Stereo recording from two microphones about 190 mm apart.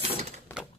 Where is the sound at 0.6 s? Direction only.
5° right (ahead or behind).